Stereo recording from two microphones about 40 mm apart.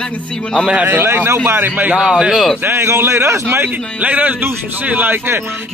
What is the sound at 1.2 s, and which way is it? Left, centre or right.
Speech, right.